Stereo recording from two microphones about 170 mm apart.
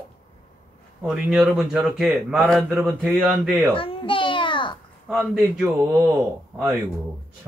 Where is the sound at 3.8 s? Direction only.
30° left (ahead or behind).